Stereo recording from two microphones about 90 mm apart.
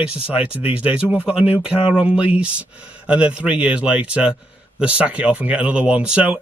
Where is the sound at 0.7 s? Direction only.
15° right (ahead or behind).